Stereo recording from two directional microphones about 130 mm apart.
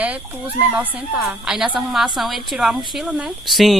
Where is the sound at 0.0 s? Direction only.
10° right (ahead or behind).